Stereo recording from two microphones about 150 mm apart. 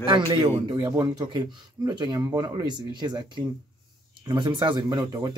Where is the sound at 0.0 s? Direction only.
35° right (ahead or behind).